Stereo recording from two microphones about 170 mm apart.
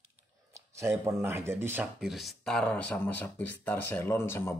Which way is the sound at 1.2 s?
15° right (ahead or behind).